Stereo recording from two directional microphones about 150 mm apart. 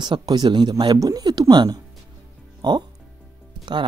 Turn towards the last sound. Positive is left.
turn(degrees=-30)  # may be behind; listen again after turning